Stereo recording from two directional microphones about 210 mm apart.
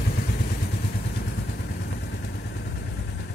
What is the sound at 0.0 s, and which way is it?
Vehicle, 50° left (ahead or behind).